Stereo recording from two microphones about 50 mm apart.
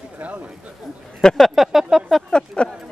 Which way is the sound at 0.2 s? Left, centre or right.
Right.